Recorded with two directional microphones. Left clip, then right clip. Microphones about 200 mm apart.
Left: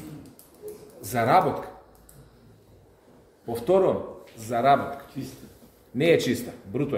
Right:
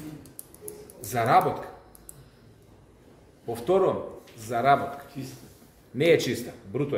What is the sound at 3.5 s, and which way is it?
Speech, 10° left (ahead or behind).